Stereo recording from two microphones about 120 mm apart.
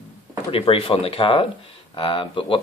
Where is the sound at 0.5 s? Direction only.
50° left (ahead or behind).